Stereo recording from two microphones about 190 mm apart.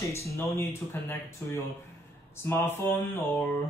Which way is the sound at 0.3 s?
15° left (ahead or behind).